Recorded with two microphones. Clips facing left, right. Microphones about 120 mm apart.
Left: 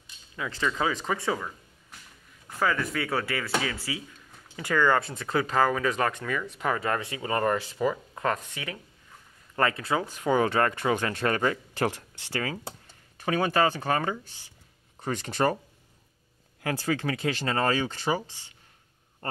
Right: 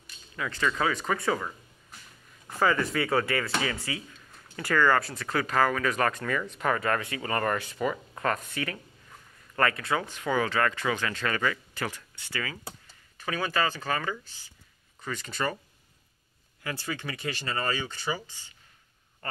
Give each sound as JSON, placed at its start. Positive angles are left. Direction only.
{"t": 0.0, "sound": "a sound", "side_deg": 15}
{"t": 1.0, "sound": "speech", "side_deg": 0}
{"t": 2.6, "sound": "speech", "side_deg": 0}
{"t": 4.6, "sound": "speech", "side_deg": 15}
{"t": 9.6, "sound": "speech", "side_deg": 25}
{"t": 10.3, "sound": "speech", "side_deg": 40}
{"t": 13.4, "sound": "speech", "side_deg": 55}
{"t": 13.7, "sound": "speech", "side_deg": 20}
{"t": 15.0, "sound": "speech", "side_deg": 65}
{"t": 16.6, "sound": "speech", "side_deg": 70}